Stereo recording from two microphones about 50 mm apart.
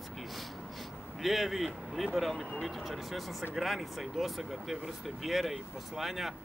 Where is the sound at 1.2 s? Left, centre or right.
Centre.